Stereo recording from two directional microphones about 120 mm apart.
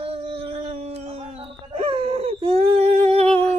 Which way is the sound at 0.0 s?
55° right (ahead or behind).